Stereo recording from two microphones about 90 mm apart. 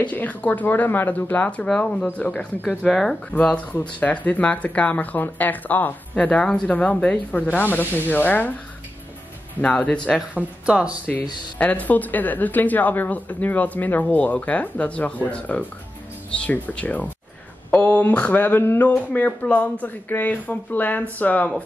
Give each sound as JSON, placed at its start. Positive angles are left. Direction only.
{"t": 0.0, "sound": "speech", "side_deg": 15}
{"t": 2.8, "sound": "speech", "side_deg": 5}
{"t": 3.4, "sound": "speech", "side_deg": 15}
{"t": 9.6, "sound": "speech", "side_deg": 15}
{"t": 10.3, "sound": "speech", "side_deg": -15}
{"t": 11.5, "sound": "speech", "side_deg": 15}